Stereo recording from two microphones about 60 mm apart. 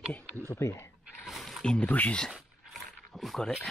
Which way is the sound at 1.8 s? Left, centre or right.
Left.